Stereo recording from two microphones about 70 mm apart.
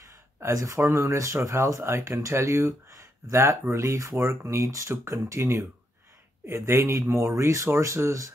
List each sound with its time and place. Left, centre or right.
0.4 s speech: right